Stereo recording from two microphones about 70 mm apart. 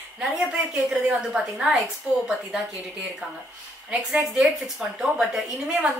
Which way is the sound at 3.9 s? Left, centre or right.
Centre.